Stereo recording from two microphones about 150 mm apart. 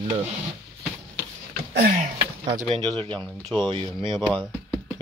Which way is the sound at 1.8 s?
55° right (ahead or behind).